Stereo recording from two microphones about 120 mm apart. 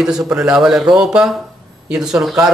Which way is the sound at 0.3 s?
5° right (ahead or behind).